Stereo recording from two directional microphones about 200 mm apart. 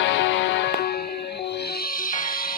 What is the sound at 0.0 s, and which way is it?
Music, 65° left (ahead or behind).